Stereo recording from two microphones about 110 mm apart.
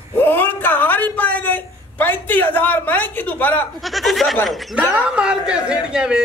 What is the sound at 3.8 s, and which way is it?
A man's voice, centre (ahead or behind).